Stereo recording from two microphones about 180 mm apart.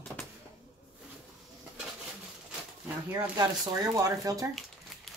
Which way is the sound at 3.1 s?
20° right (ahead or behind).